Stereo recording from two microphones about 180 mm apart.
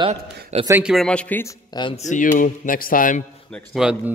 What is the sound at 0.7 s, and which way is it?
Speech, 10° right (ahead or behind).